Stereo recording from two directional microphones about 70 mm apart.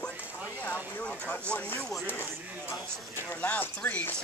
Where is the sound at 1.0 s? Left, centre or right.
Centre.